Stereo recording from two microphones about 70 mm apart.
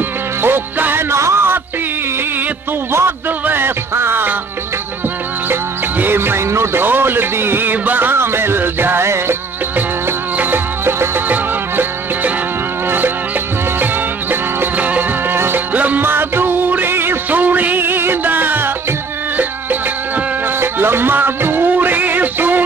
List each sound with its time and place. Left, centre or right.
0.4 s music: right
1.1 s a sound: right
2.9 s a sound: right
3.4 s music: right
5.5 s music: right
9.8 s music: right
14.3 s music: right